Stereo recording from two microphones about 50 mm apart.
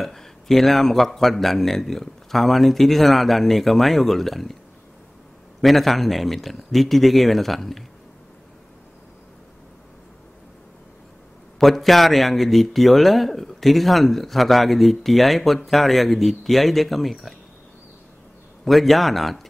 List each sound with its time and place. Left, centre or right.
0.0 s a man's voice: centre
5.6 s a man's voice: centre
11.6 s a man's voice: centre
18.6 s a man's voice: centre